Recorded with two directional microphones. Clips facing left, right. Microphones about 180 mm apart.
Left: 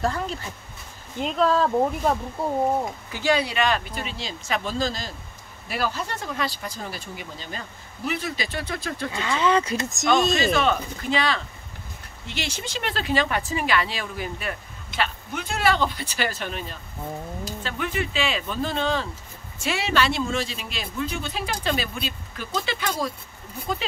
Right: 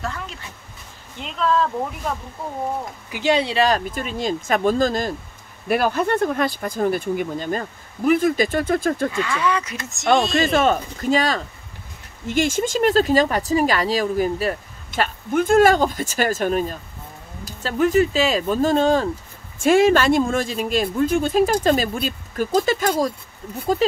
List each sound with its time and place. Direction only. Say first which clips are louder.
0.0 s speech: left 4 dB; 35° left (ahead or behind)
3.1 s speech: right 5 dB; 20° right (ahead or behind); by 9.1 s 50° right (ahead or behind)
9.1 s speech: even; 25° left (ahead or behind); by 10.3 s 40° left (ahead or behind)
10.3 s speech: right 4 dB; 45° right (ahead or behind)